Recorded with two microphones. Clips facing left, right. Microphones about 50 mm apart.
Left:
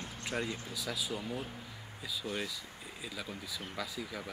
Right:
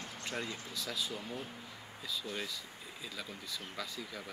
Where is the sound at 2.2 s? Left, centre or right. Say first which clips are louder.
Left 5 dB; left.